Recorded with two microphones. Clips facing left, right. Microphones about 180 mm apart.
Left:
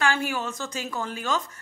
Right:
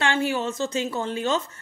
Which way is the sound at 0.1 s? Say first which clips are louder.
Right 4 dB; 25° right (ahead or behind).